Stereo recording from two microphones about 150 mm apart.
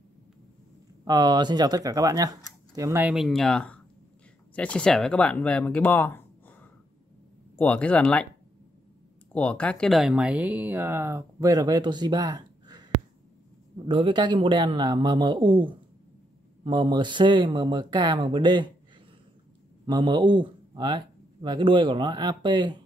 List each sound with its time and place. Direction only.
1.0 s speech: 25° right (ahead or behind)
3.2 s speech: centre (ahead or behind)
9.3 s speech: 10° left (ahead or behind); by 12.8 s 25° right (ahead or behind)
13.8 s speech: 35° right (ahead or behind)
19.9 s speech: 30° right (ahead or behind)